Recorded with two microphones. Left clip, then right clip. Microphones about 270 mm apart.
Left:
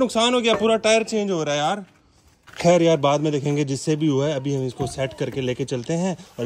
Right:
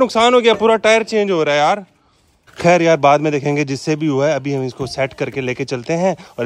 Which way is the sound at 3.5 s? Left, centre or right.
Centre.